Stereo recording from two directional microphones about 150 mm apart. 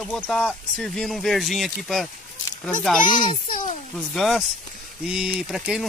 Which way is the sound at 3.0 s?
60° left (ahead or behind).